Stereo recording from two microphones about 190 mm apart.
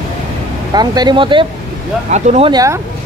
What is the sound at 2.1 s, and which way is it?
Speech, 35° right (ahead or behind).